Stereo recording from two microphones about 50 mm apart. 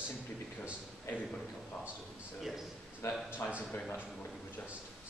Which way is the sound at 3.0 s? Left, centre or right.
Left.